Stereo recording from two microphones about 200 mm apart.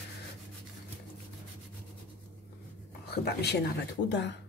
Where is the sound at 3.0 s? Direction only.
55° left (ahead or behind).